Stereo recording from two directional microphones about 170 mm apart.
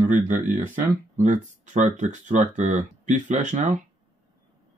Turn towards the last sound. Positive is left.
turn(degrees=-45)  # may be behind; listen again after turning